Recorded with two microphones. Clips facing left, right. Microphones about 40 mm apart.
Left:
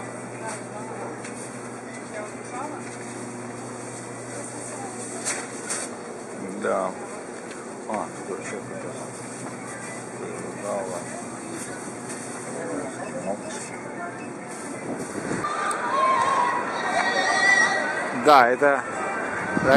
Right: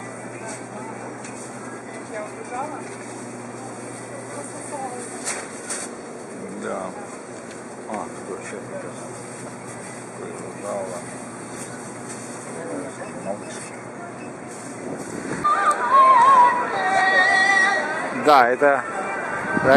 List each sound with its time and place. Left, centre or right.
7.9 s vehicle: centre
10.6 s speech: centre
12.5 s vehicle: centre
15.4 s a sound: centre
17.8 s music: centre